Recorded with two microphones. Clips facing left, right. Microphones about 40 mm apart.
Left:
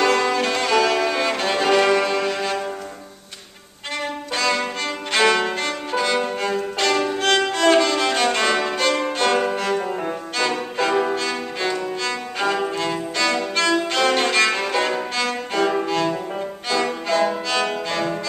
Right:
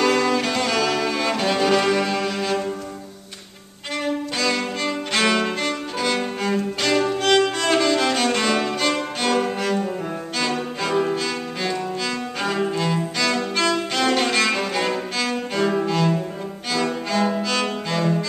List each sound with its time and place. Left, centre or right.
0.0 s music: centre
4.0 s violin: centre
7.0 s music: centre
9.8 s music: centre
10.3 s music: centre
17.1 s cello: centre